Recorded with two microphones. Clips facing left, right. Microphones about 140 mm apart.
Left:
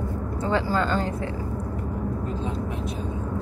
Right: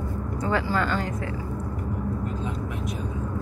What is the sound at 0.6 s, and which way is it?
Speech, 30° left (ahead or behind).